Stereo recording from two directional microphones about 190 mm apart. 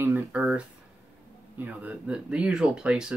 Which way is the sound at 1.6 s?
10° right (ahead or behind).